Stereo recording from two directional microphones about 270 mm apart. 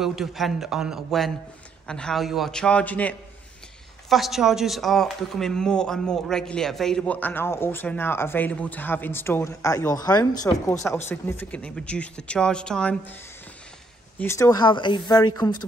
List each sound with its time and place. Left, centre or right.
0.0 s speech: centre
14.1 s speech: centre